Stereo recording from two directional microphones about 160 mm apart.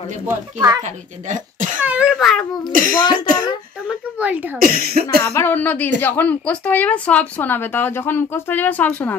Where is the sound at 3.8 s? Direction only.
10° right (ahead or behind).